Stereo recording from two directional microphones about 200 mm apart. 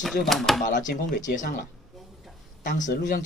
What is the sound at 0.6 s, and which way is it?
Speech, 40° left (ahead or behind).